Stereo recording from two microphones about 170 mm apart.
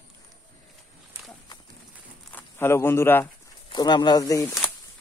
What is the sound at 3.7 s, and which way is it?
Speech, 25° left (ahead or behind).